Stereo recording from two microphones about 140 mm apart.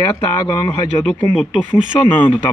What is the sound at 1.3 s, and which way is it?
Speech, 10° left (ahead or behind).